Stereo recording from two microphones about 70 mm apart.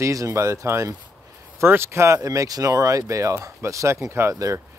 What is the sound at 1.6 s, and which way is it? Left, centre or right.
Speech, right.